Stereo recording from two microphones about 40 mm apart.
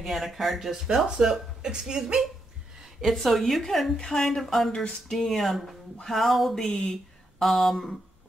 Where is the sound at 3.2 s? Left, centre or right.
Centre.